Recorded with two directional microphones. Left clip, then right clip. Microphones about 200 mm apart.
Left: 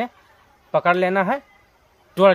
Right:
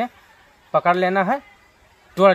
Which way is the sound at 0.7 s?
10° left (ahead or behind).